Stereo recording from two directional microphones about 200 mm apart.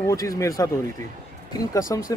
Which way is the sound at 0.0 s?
15° left (ahead or behind).